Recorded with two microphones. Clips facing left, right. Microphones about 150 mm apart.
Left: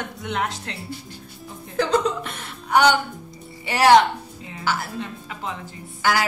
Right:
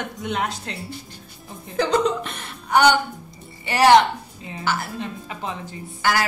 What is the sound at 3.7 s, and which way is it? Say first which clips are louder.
Speech: even; 5° left (ahead or behind).